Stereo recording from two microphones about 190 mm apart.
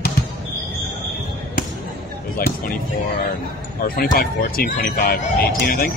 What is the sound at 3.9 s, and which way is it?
Speech, 50° left (ahead or behind).